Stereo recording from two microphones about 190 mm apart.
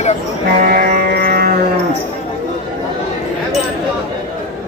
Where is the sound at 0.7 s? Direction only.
50° right (ahead or behind).